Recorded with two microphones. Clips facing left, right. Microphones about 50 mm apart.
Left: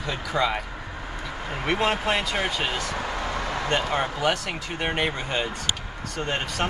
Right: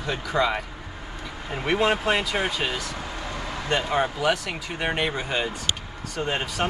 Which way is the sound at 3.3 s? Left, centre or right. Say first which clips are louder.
Left 4 dB; left.